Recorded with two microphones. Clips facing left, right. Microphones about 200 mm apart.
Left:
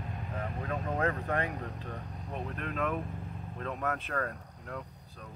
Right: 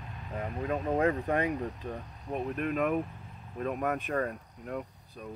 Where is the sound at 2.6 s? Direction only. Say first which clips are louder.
Right 5 dB; 15° right (ahead or behind).